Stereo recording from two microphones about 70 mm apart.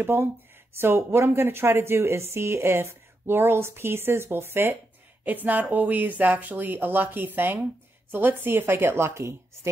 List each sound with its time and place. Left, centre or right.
0.0 s a woman's voice: right